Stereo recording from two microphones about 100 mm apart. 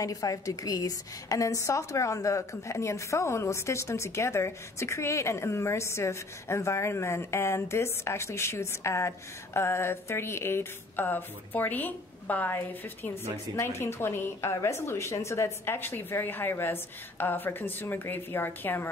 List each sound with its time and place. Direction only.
0.0 s a woman's voice: 35° left (ahead or behind); by 18.9 s 20° left (ahead or behind)